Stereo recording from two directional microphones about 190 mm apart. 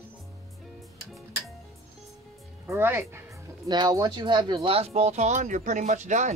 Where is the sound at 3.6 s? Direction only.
20° right (ahead or behind); by 6.3 s 40° right (ahead or behind).